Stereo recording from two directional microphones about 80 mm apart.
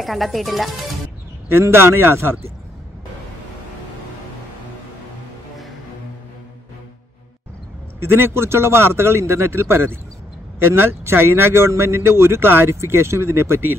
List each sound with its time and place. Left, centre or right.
0.0 s speech: centre
1.5 s speech: right
8.0 s speech: right